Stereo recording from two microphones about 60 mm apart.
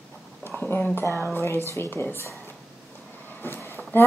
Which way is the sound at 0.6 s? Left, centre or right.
Left.